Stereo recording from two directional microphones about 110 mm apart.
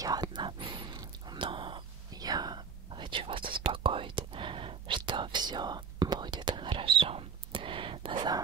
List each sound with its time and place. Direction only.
0.0 s whispering: 40° right (ahead or behind)